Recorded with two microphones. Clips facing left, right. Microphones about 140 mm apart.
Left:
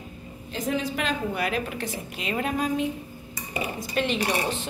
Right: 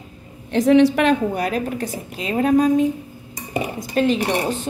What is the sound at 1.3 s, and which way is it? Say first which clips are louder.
A woman's voice: right 5 dB; 40° right (ahead or behind).